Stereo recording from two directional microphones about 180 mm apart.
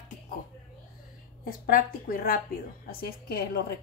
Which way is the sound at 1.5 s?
55° left (ahead or behind).